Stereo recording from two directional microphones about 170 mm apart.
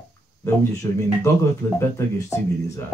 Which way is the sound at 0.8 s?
15° left (ahead or behind).